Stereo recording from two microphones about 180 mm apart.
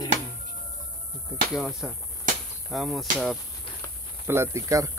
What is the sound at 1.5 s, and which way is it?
Speech, centre (ahead or behind).